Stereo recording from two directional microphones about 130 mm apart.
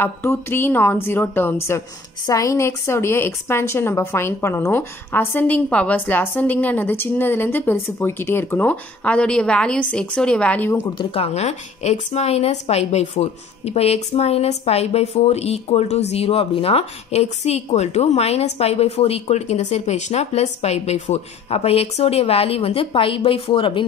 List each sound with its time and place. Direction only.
0.0 s a woman's voice: 20° left (ahead or behind)
11.0 s a woman's voice: 45° left (ahead or behind)